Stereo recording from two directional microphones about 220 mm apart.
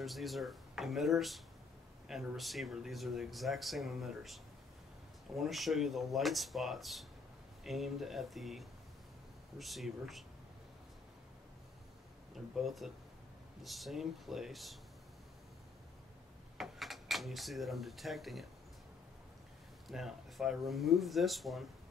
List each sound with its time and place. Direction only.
0.0 s speech: centre (ahead or behind)
12.5 s speech: centre (ahead or behind)
16.5 s speech: centre (ahead or behind)
19.9 s speech: centre (ahead or behind)